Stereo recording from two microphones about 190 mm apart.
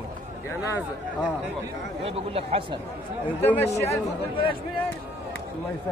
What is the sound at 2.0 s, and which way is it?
Speech, 30° right (ahead or behind).